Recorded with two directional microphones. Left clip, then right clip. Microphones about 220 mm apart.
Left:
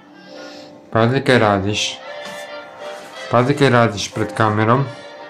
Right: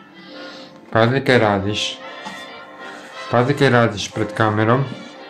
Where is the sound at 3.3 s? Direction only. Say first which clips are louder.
Left 1 dB; 10° left (ahead or behind).